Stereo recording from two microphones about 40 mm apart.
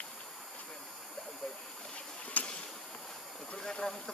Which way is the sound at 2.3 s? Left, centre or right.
Left.